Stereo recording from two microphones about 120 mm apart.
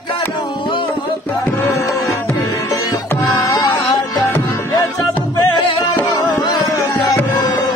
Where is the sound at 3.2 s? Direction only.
30° left (ahead or behind).